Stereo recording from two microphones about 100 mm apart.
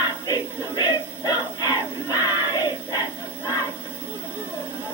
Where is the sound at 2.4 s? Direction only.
40° left (ahead or behind).